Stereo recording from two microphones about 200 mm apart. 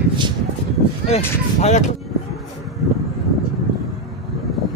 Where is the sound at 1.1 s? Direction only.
35° left (ahead or behind).